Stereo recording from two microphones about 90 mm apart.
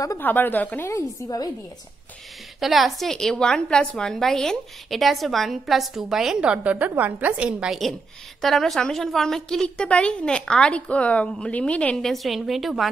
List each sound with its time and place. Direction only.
0.2 s a woman's voice: 20° left (ahead or behind)
2.6 s a woman's voice: centre (ahead or behind)
8.4 s a woman's voice: centre (ahead or behind)